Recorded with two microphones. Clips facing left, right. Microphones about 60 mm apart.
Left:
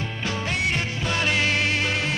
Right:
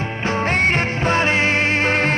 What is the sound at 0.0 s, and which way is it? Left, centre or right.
Music, right.